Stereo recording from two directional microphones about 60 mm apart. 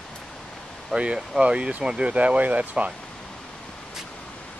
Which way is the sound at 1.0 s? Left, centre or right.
Centre.